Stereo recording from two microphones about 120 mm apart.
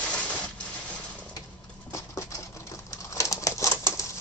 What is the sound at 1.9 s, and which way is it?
Typewriter, 25° left (ahead or behind).